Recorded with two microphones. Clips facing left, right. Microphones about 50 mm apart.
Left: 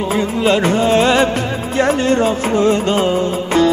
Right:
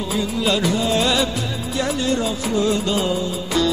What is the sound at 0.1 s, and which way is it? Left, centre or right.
Music, left.